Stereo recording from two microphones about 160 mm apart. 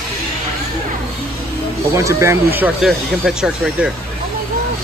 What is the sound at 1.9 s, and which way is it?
Speech, 20° right (ahead or behind).